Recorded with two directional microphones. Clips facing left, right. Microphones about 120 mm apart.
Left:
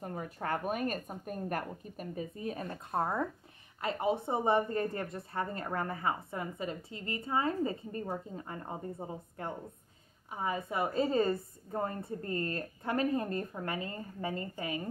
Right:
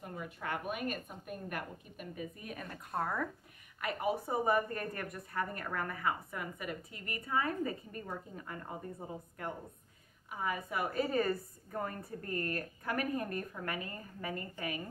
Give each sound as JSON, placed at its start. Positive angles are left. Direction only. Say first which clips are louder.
{"t": 0.0, "sound": "a woman's voice", "louder": "left 4 dB", "side_deg": 40}